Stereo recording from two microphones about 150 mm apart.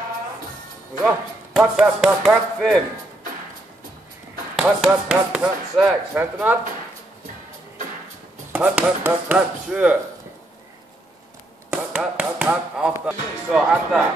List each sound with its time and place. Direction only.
1.0 s speech: 5° right (ahead or behind)
4.6 s speech: 5° right (ahead or behind)
8.5 s speech: 10° right (ahead or behind)
11.7 s speech: 10° right (ahead or behind)